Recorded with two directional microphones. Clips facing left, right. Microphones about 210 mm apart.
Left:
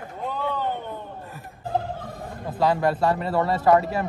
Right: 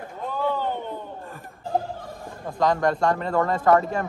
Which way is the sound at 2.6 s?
5° left (ahead or behind).